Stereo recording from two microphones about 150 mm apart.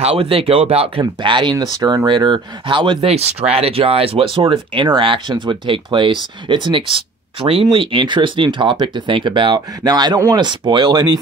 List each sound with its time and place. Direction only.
0.0 s speech: 40° right (ahead or behind)